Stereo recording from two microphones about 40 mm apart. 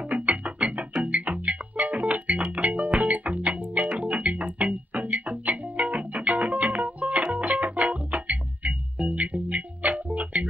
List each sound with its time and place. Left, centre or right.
0.1 s music: right